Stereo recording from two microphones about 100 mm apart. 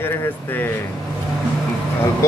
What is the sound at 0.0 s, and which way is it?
Speech, 20° left (ahead or behind).